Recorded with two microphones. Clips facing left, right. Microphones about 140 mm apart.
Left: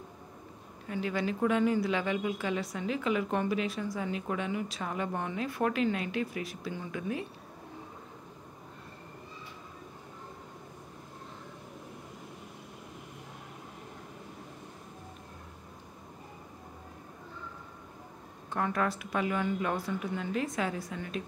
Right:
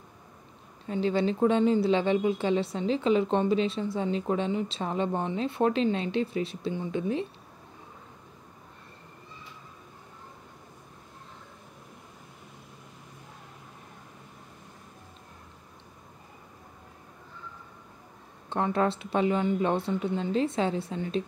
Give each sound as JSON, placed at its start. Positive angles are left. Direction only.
{"t": 0.8, "sound": "speech", "side_deg": -30}
{"t": 18.5, "sound": "speech", "side_deg": -25}